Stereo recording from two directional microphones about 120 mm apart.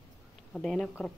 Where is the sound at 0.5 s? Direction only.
5° left (ahead or behind).